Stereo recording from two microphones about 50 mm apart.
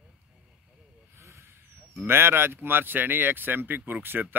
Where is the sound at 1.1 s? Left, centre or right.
Right.